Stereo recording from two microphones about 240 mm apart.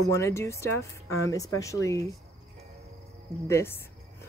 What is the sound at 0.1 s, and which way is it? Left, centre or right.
Speech, centre.